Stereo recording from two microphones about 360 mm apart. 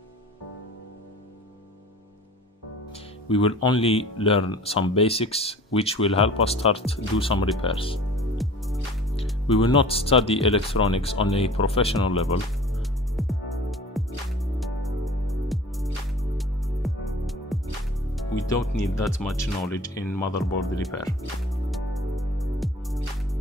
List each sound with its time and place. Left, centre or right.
3.3 s speech: centre
8.2 s music: centre
9.6 s speech: centre
12.7 s music: centre